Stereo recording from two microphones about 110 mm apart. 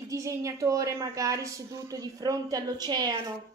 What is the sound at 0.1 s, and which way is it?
A woman's voice, 30° right (ahead or behind).